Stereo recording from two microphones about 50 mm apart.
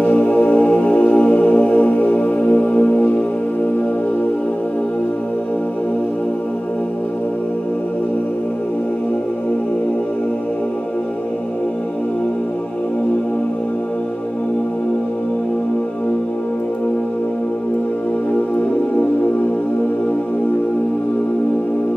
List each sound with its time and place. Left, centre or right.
0.0 s music: left